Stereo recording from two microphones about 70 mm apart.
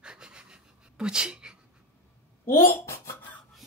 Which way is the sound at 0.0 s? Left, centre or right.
Centre.